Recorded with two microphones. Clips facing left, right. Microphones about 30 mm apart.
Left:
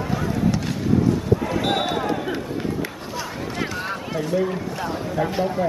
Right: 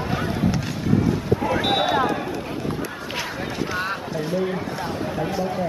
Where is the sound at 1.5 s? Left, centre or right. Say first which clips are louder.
Right 2 dB; centre.